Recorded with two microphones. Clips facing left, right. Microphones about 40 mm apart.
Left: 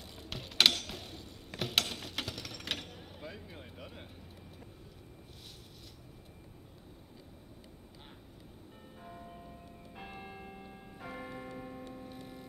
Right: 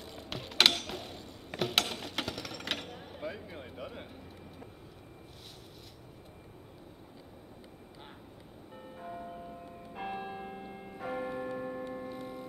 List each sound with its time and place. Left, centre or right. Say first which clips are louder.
0.1 s mechanisms: right 3 dB; centre
1.6 s a sound: right 2 dB; centre
9.9 s church bell: right 9 dB; right
11.5 s music: right 7 dB; right
12.1 s music: right 6 dB; centre